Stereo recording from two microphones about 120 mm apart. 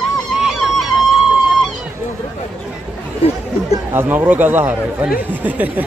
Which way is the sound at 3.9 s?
15° right (ahead or behind).